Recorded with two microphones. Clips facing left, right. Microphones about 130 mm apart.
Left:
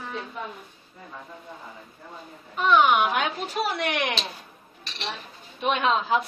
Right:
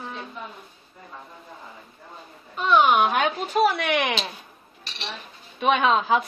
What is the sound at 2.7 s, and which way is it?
Speech, 35° right (ahead or behind).